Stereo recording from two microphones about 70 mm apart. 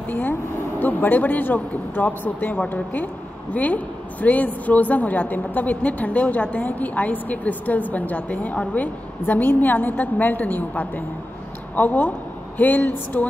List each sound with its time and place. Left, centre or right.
0.1 s a woman's voice: left